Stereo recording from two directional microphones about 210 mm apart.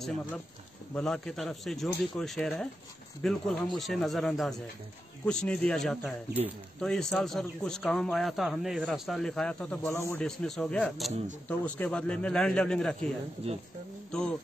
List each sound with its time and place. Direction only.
0.9 s speech: centre (ahead or behind)
13.4 s speech: 30° right (ahead or behind)